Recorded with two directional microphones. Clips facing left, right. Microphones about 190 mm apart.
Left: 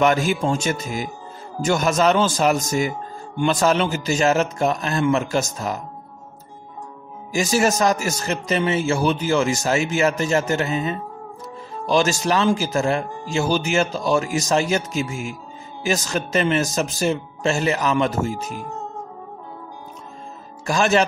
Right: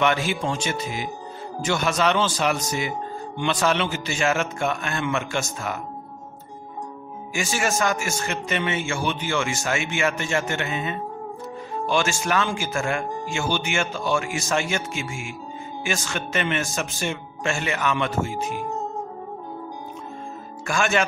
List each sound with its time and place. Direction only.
0.0 s a man's voice: 40° left (ahead or behind)
7.3 s a man's voice: 40° left (ahead or behind)
20.6 s a man's voice: 35° left (ahead or behind)